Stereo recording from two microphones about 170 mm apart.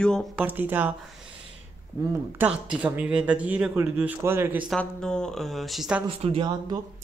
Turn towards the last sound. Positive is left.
turn(degrees=-25)  # may be behind; listen again after turning